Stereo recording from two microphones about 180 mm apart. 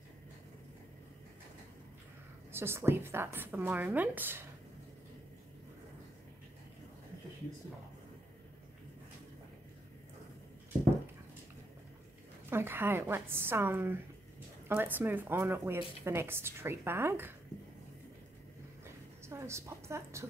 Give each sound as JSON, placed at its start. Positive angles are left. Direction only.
{"t": 2.5, "sound": "a woman's voice", "side_deg": -15}
{"t": 12.4, "sound": "a woman's voice", "side_deg": -15}
{"t": 19.2, "sound": "a woman's voice", "side_deg": -15}